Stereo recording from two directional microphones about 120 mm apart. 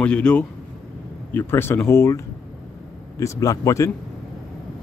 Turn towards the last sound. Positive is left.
turn(degrees=25)  # may be behind; listen again after turning